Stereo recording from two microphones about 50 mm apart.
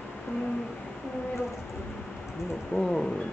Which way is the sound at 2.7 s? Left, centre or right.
Centre.